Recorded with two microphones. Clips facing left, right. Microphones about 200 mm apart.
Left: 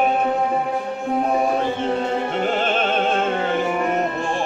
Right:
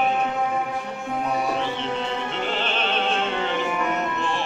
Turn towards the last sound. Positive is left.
turn(degrees=45)  # may be behind; listen again after turning